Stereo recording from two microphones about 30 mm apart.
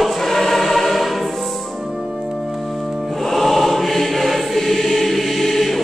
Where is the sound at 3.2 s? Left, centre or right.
Centre.